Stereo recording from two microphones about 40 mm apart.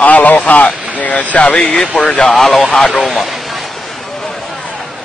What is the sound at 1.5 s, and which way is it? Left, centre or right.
Speech, left.